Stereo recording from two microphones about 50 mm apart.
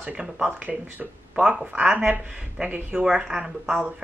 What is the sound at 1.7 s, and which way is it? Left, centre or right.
Speech, right.